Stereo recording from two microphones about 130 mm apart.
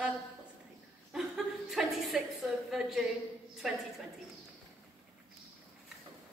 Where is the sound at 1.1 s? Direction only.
5° right (ahead or behind).